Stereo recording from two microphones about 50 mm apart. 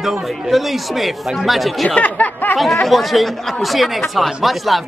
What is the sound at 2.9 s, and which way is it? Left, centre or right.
A man's voice, centre.